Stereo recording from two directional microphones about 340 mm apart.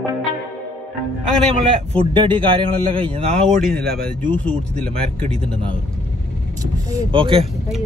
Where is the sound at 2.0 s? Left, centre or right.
Centre.